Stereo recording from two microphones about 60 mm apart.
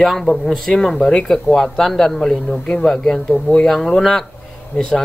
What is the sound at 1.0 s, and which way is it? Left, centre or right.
Speech, centre.